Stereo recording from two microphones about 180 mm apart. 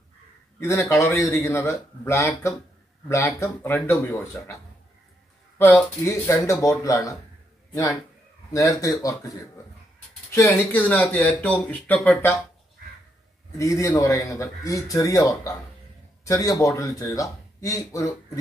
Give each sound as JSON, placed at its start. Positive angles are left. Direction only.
{"t": 0.6, "sound": "speech", "side_deg": 15}
{"t": 5.6, "sound": "speech", "side_deg": 10}
{"t": 13.6, "sound": "speech", "side_deg": 15}